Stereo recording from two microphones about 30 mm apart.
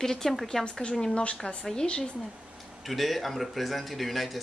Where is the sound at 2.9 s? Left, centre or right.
Centre.